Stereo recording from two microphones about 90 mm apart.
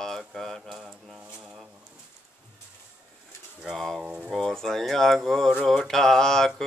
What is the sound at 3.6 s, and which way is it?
Speech, centre (ahead or behind).